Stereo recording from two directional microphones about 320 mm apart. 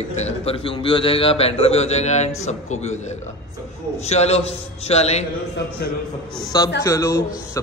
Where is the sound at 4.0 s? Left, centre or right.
Centre.